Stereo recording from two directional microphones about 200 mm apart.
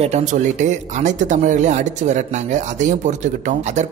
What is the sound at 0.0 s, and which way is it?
Speech, 35° right (ahead or behind).